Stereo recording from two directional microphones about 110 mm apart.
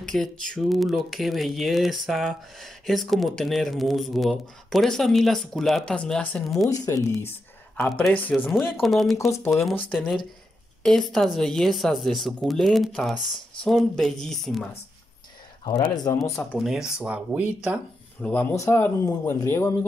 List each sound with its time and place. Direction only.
0.1 s speech: 5° left (ahead or behind)
6.7 s speech: 25° left (ahead or behind)
8.8 s speech: centre (ahead or behind)
9.3 s speech: 25° left (ahead or behind)
9.9 s speech: centre (ahead or behind)
15.7 s speech: 35° left (ahead or behind)
16.5 s speech: centre (ahead or behind)
18.2 s speech: 15° left (ahead or behind)
18.5 s speech: 25° left (ahead or behind)